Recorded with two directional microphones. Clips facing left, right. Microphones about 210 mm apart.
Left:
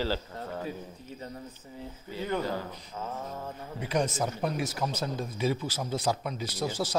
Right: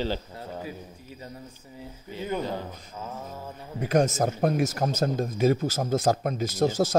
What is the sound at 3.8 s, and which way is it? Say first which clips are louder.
Speech: right 6 dB; 45° right (ahead or behind).